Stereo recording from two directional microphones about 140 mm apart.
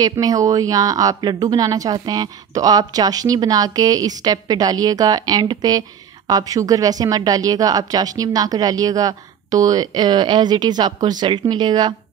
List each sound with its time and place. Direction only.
0.0 s speech: 25° right (ahead or behind)